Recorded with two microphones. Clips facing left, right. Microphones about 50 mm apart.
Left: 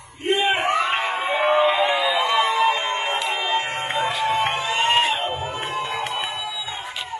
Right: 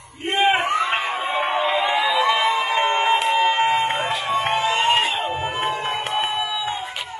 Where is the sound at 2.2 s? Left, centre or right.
Right.